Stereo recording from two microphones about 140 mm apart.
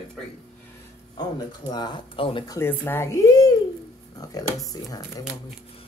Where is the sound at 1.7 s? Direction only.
30° left (ahead or behind).